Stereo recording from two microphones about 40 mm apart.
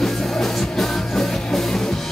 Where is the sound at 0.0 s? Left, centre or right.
Centre.